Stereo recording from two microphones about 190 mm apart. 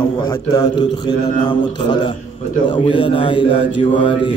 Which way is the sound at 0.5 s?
20° left (ahead or behind).